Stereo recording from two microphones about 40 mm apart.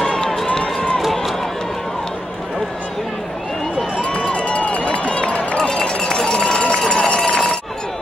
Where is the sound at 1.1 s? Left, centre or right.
Centre.